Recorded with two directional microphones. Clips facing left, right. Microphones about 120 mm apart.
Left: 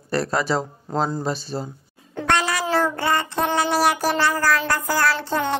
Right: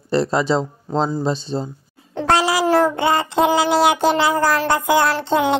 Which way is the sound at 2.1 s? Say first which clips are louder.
Right 5 dB; 30° right (ahead or behind).